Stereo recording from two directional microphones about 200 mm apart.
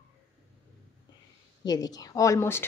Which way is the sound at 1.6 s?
20° left (ahead or behind).